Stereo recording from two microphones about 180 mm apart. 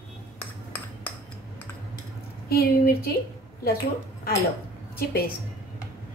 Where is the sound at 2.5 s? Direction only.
60° left (ahead or behind).